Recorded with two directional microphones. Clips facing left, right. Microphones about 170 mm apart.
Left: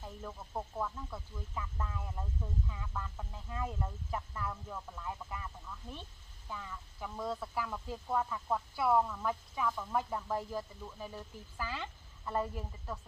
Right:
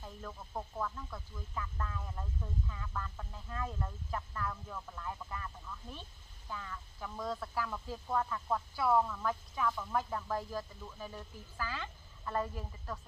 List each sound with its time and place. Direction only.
0.0 s speech: 10° left (ahead or behind)
6.5 s speech: 10° left (ahead or behind)
10.3 s speech: 20° left (ahead or behind)
12.3 s speech: 10° left (ahead or behind)